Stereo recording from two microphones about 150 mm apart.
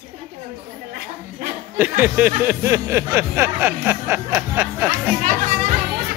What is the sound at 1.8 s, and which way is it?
Speech, 10° right (ahead or behind).